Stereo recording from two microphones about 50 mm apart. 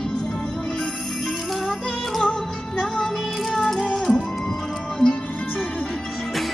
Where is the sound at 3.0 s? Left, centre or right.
Centre.